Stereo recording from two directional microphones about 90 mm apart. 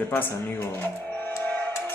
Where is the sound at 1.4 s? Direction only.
20° left (ahead or behind).